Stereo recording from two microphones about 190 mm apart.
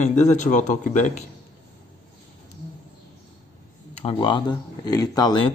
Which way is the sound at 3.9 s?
30° left (ahead or behind).